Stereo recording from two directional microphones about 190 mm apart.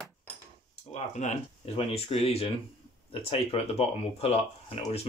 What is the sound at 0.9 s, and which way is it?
Speech, 35° left (ahead or behind).